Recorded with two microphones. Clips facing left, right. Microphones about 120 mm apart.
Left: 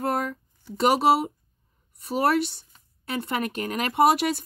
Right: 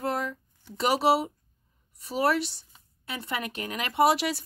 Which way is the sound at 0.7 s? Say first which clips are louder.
Left 3 dB; 50° left (ahead or behind).